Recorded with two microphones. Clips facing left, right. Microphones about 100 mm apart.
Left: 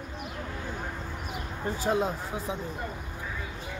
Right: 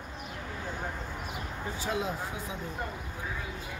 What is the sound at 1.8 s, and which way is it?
Speech, 40° left (ahead or behind).